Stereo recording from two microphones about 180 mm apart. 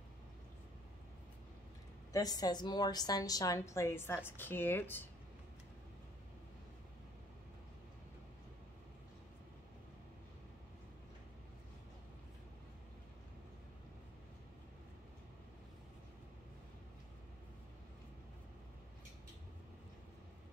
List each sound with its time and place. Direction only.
2.1 s a woman's voice: 20° left (ahead or behind)